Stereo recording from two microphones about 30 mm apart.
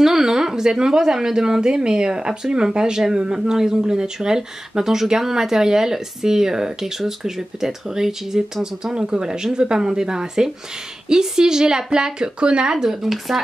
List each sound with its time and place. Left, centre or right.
0.0 s speech: centre; by 12.7 s right
12.7 s speech: centre